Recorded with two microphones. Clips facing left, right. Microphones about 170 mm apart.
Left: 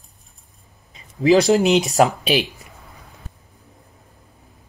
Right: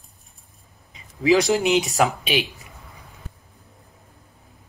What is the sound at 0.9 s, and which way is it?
Speech, 35° left (ahead or behind).